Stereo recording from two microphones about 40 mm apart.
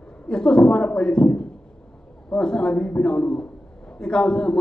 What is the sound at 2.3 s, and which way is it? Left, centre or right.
A man's voice, left.